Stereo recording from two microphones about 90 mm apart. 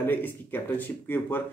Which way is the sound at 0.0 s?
20° left (ahead or behind).